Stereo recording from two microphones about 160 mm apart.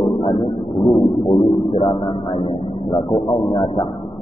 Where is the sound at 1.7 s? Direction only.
35° left (ahead or behind).